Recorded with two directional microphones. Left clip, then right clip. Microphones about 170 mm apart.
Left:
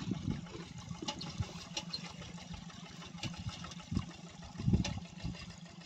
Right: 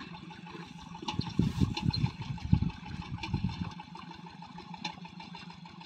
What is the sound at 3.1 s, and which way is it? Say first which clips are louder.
Engine: right 5 dB; 20° left (ahead or behind).